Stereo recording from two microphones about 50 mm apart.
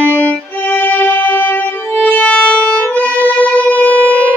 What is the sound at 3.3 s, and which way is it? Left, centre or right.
Shofar, left.